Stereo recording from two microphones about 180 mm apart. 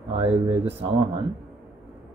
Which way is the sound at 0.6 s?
30° right (ahead or behind).